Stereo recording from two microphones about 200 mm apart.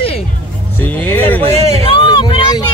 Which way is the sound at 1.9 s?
25° left (ahead or behind).